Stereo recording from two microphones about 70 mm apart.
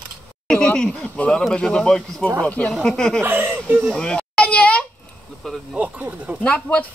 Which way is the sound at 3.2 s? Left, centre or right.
Right.